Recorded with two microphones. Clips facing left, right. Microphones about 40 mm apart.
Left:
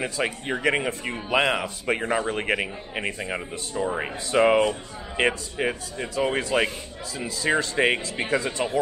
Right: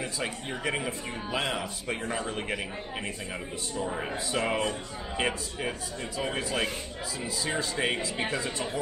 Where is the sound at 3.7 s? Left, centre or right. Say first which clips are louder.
Left 5 dB; left.